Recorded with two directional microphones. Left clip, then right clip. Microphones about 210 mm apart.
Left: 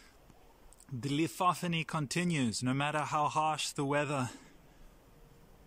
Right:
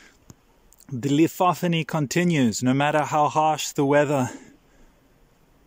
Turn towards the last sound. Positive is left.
turn(degrees=-35)  # may be behind; listen again after turning